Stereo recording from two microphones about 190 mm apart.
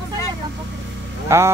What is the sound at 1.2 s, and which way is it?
Speech, 15° right (ahead or behind).